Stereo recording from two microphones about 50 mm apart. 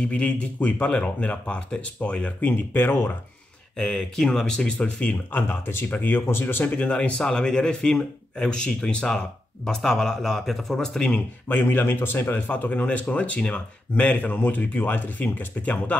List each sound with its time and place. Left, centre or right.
0.1 s speech: left
2.7 s speech: left
3.7 s speech: centre; by 6.2 s left
6.2 s speech: left
6.7 s speech: left
11.4 s speech: left